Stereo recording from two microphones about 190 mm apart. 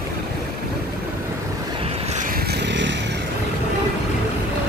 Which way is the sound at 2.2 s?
50° right (ahead or behind).